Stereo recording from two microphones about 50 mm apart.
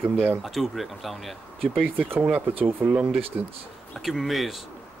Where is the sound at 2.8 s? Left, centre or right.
Right.